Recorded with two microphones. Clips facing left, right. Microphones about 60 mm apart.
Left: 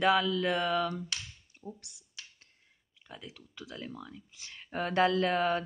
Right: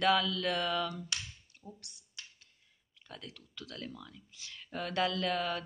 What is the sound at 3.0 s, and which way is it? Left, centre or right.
Speech, centre.